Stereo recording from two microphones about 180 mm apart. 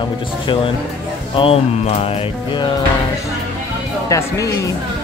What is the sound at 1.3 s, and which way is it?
Music, 30° left (ahead or behind).